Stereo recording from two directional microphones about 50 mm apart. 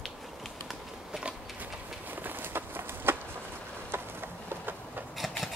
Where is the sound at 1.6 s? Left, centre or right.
Right.